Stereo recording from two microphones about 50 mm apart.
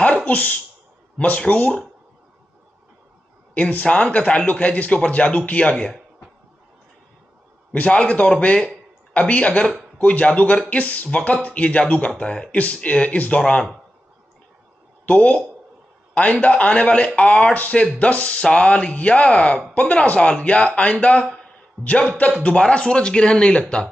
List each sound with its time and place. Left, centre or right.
0.2 s speech: left
3.5 s speech: left
7.7 s speech: left
9.3 s speech: left
15.0 s speech: left
22.4 s speech: left